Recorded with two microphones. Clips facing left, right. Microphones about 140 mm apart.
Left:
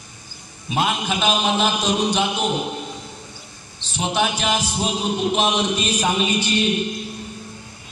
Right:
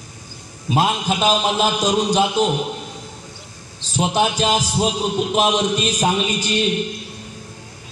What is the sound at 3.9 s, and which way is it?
A man's voice, 40° right (ahead or behind).